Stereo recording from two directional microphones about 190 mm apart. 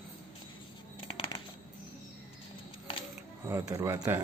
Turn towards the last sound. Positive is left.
turn(degrees=-15)  # may be behind; listen again after turning